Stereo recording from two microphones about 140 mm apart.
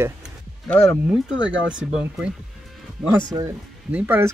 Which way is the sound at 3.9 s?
15° right (ahead or behind).